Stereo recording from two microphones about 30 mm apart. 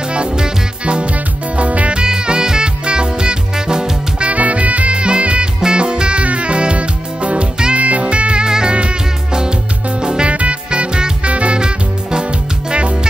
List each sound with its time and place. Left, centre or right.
0.1 s music: right
1.1 s music: right
2.0 s music: right
4.3 s music: right
4.9 s music: right
6.2 s music: right
8.5 s music: right
10.3 s music: right
10.7 s music: right
11.2 s music: right
11.6 s music: right